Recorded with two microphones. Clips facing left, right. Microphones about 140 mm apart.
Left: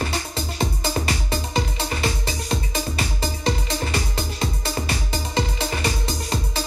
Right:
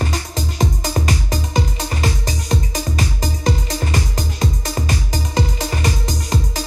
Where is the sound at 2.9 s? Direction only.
40° right (ahead or behind).